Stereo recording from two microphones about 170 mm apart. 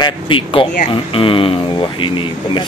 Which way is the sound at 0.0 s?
30° left (ahead or behind).